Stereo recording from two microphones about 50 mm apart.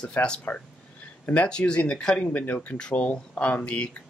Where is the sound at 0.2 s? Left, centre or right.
Left.